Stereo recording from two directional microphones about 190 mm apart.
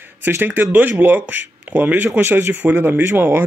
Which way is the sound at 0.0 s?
10° right (ahead or behind).